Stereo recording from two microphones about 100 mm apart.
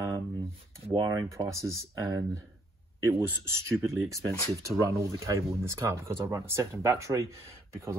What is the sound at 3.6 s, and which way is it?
Speech, 30° right (ahead or behind).